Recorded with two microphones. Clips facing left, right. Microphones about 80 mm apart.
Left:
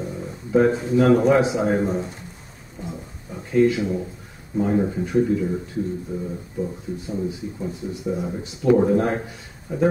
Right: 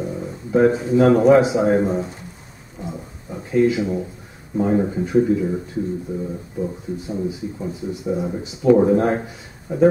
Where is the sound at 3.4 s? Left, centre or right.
Centre.